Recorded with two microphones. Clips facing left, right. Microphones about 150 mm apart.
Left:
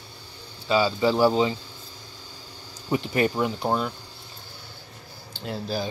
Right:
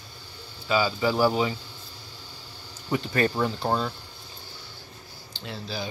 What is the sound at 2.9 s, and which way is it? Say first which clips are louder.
Speech: left 2 dB; 20° left (ahead or behind).